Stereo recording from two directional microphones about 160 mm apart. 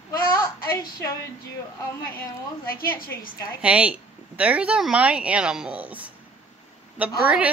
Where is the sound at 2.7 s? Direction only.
65° left (ahead or behind).